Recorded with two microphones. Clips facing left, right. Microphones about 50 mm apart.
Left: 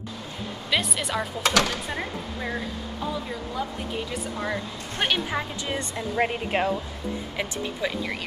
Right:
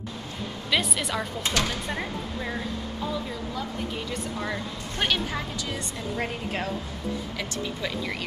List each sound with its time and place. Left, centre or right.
0.7 s speech: centre
1.4 s speech: left
1.7 s speech: centre
4.1 s speech: centre
5.7 s speech: left
7.8 s speech: centre